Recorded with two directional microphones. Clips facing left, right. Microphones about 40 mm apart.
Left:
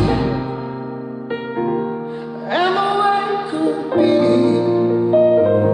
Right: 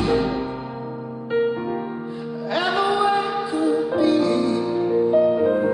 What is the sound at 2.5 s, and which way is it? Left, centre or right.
Music, left.